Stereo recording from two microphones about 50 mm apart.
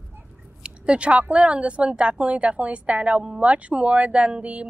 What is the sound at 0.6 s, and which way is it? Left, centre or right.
A woman's voice, right.